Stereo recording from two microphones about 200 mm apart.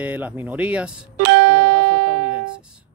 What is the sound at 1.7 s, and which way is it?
Music, 5° right (ahead or behind).